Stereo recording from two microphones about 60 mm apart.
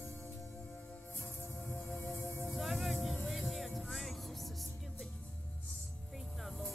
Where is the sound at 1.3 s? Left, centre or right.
Left.